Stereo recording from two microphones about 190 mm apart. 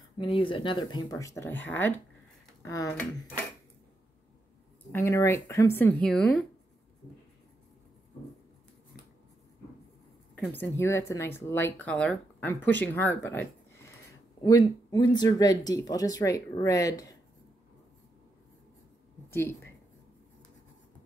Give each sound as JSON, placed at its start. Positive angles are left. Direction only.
{"t": 0.2, "sound": "speech", "side_deg": 25}
{"t": 4.9, "sound": "speech", "side_deg": 15}
{"t": 10.3, "sound": "speech", "side_deg": 10}